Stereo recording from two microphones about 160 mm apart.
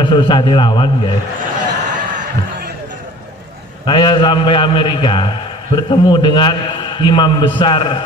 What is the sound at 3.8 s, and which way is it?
A man's voice, 30° left (ahead or behind).